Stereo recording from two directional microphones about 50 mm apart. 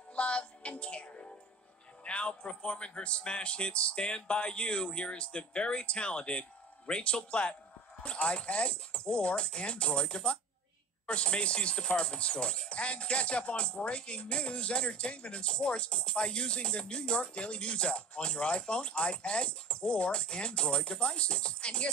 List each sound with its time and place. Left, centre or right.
0.1 s music: left
2.0 s speech: left